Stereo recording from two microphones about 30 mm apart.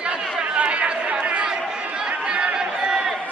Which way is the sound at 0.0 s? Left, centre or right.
Right.